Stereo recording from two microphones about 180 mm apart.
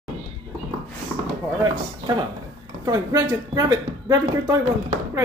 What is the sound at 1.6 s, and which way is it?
Speech, 25° right (ahead or behind).